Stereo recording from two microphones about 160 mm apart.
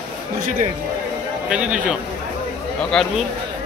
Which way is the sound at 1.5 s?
5° right (ahead or behind).